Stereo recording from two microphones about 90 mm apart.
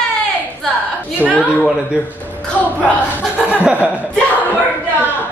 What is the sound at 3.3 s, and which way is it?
Chuckle, 15° right (ahead or behind).